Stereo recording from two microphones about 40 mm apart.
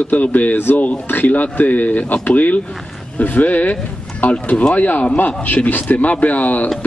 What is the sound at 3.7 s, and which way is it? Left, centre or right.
Speech, left.